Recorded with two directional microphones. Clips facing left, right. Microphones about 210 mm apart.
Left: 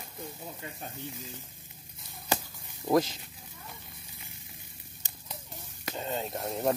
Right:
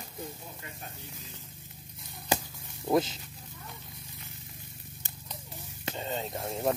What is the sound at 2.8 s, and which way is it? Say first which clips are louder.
Speech: left 1 dB; centre (ahead or behind).